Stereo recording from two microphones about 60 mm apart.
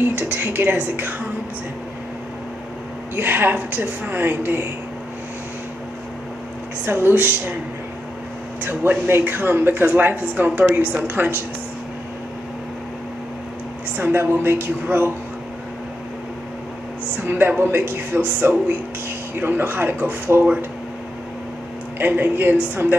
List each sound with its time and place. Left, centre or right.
0.2 s a woman's voice: right
3.2 s a woman's voice: right
6.9 s a woman's voice: right
8.6 s a woman's voice: right
14.0 s a woman's voice: right
17.2 s a woman's voice: right
21.9 s a woman's voice: right